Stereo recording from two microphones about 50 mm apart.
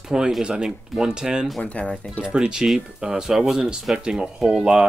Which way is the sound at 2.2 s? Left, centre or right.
Centre.